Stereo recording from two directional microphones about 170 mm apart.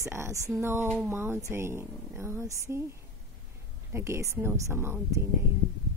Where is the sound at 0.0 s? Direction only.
15° right (ahead or behind).